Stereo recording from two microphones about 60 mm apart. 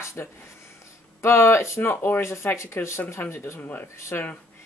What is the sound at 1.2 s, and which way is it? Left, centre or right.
Speech, left.